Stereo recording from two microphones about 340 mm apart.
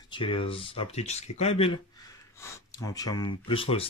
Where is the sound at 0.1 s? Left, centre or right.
Centre.